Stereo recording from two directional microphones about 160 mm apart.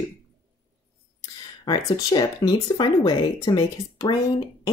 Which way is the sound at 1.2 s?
25° left (ahead or behind).